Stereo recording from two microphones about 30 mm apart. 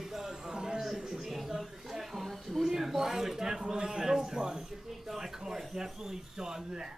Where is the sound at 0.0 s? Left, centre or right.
Centre.